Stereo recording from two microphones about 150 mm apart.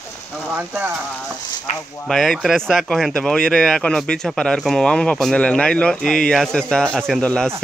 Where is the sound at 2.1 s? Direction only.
Centre (ahead or behind).